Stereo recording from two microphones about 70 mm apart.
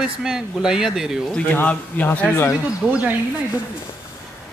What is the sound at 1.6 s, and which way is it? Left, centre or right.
Speech, left.